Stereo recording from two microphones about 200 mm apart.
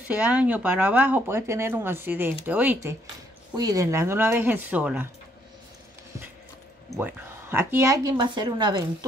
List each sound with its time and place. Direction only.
0.0 s speech: 5° right (ahead or behind)
7.0 s speech: 10° right (ahead or behind)